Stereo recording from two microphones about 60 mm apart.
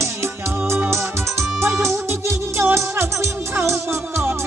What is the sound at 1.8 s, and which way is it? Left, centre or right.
Music, right.